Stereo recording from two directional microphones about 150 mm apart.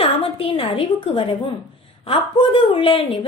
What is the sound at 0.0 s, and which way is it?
A woman's voice, 40° left (ahead or behind).